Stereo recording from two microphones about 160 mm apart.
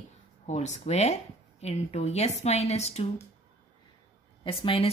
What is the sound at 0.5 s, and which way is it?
A woman's voice, 45° left (ahead or behind).